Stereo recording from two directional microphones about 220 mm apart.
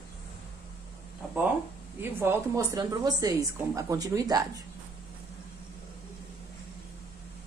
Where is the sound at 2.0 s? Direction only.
10° right (ahead or behind).